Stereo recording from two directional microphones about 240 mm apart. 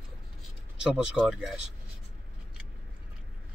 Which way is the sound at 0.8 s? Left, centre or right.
Centre.